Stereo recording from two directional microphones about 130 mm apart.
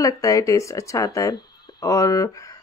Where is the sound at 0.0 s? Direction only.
25° left (ahead or behind).